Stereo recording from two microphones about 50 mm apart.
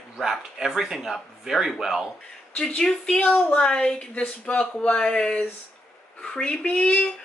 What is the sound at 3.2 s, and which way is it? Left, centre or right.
Speech, left.